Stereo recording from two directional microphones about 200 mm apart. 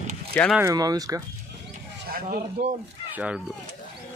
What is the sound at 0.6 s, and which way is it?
Speech, 15° right (ahead or behind).